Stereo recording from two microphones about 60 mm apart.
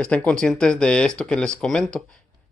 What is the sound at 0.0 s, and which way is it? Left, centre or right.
Speech, centre.